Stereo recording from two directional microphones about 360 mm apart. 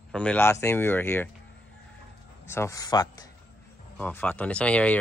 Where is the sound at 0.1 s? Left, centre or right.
Centre.